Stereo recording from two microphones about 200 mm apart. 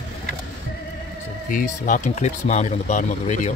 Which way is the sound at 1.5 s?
40° left (ahead or behind).